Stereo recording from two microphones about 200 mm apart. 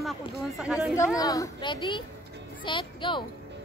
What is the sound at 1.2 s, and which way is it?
A woman's voice, 20° left (ahead or behind).